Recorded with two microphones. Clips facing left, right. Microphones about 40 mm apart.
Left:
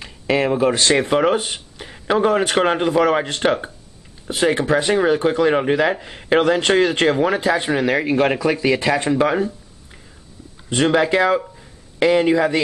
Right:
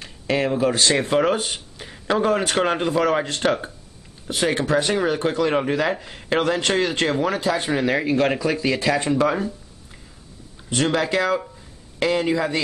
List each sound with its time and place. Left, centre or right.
0.0 s speech: centre
6.4 s speech: left
7.7 s speech: centre
10.7 s speech: left